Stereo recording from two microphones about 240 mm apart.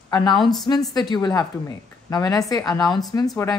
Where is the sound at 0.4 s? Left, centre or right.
Centre.